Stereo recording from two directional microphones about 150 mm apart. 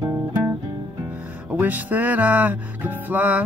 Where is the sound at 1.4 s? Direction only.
15° right (ahead or behind).